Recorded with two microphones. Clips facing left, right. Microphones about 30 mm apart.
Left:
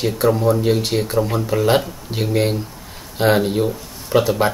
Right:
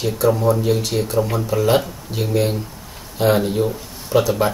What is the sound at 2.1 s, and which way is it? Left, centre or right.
Speech, left.